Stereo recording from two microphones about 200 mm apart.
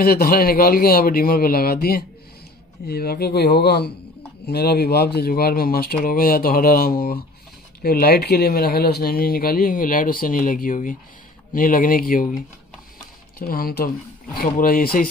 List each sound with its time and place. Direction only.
0.0 s speech: 50° left (ahead or behind)
13.4 s speech: 45° left (ahead or behind)